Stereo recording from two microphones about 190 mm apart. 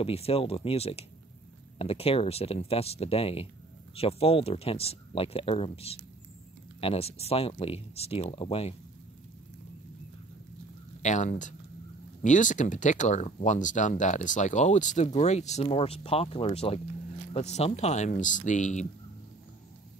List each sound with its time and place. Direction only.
0.0 s speech: 30° left (ahead or behind)
11.0 s speech: 40° left (ahead or behind)